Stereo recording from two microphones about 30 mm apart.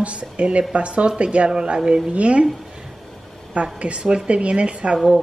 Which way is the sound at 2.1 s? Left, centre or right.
Right.